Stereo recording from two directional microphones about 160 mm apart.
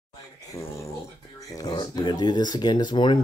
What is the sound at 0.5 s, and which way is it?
Speech, 15° left (ahead or behind).